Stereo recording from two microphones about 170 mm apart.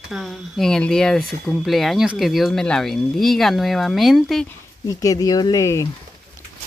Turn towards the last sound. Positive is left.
turn(degrees=20)  # may be behind; listen again after turning